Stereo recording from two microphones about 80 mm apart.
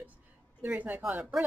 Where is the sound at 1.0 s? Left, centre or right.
Centre.